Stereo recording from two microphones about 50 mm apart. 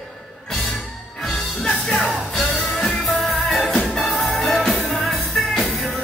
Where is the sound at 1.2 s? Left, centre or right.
Centre.